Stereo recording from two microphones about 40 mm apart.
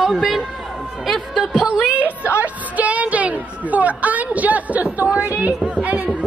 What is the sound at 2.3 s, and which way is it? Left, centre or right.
Music, right.